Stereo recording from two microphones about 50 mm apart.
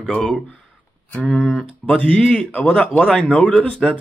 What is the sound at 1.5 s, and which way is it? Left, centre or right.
Speech, centre.